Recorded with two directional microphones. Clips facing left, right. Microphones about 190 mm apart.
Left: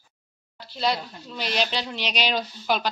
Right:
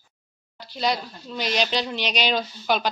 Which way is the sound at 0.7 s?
5° left (ahead or behind).